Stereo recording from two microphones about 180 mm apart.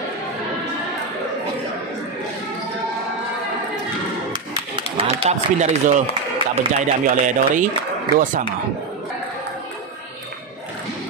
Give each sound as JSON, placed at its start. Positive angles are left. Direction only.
{"t": 4.7, "sound": "speech", "side_deg": -30}